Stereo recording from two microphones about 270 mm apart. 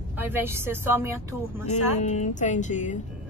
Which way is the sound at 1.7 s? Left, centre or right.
Left.